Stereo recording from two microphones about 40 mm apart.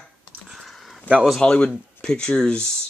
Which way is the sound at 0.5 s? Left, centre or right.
Centre.